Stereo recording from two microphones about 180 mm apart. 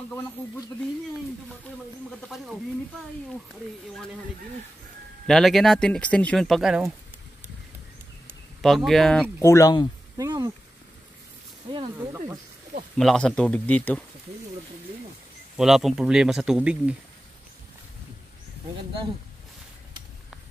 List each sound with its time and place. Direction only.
2.2 s speech: centre (ahead or behind)
5.2 s speech: centre (ahead or behind)
8.5 s speech: centre (ahead or behind); by 9.8 s 20° left (ahead or behind)
10.1 s a sound: 20° right (ahead or behind)
11.7 s speech: 25° right (ahead or behind)
12.9 s speech: 5° left (ahead or behind)
15.5 s speech: centre (ahead or behind)